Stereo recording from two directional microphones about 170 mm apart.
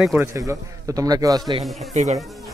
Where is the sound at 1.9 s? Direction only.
40° right (ahead or behind).